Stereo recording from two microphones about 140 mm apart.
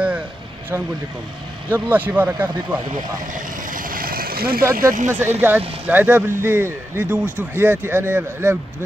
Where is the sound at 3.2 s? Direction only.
70° right (ahead or behind); by 4.6 s 90° right.